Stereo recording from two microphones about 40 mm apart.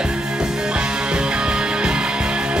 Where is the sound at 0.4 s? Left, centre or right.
Right.